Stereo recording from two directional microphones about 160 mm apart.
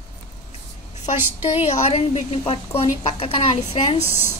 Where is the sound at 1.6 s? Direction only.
40° left (ahead or behind).